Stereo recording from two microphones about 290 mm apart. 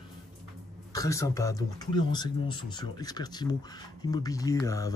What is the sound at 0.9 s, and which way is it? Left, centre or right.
Speech, centre.